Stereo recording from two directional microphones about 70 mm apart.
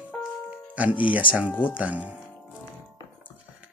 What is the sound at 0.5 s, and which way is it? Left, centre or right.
Music, right.